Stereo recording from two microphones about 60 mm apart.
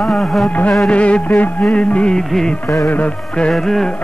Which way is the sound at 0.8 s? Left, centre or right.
Left.